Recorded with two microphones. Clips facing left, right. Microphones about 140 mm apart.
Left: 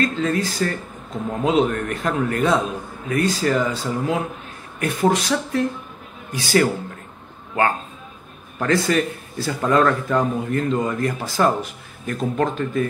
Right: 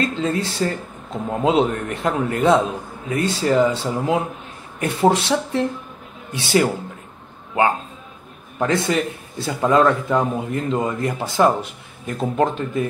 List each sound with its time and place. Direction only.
0.0 s a man's voice: 25° right (ahead or behind)
8.5 s a man's voice: 20° right (ahead or behind)